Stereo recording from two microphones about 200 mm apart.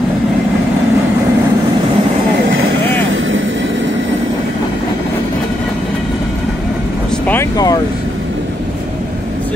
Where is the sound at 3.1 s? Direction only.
75° right (ahead or behind).